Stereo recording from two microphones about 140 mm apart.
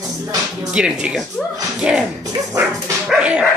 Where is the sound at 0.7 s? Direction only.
5° right (ahead or behind).